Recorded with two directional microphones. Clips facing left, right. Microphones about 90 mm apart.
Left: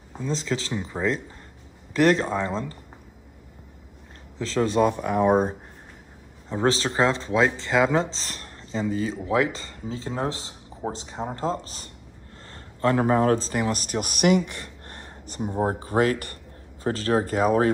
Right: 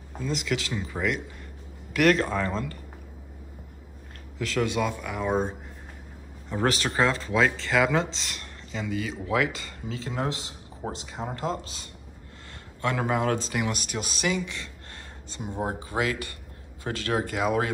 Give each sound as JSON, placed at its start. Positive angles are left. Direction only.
{"t": 0.2, "sound": "speech", "side_deg": 30}
{"t": 4.4, "sound": "speech", "side_deg": 30}
{"t": 4.9, "sound": "speech", "side_deg": 45}
{"t": 5.2, "sound": "speech", "side_deg": 15}
{"t": 6.5, "sound": "speech", "side_deg": 25}
{"t": 15.6, "sound": "speech", "side_deg": 40}